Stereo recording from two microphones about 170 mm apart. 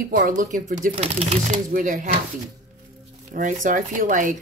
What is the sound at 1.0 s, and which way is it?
Speech, 40° right (ahead or behind).